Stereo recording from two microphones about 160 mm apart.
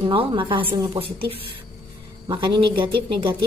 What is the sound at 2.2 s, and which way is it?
A woman's voice, 30° right (ahead or behind).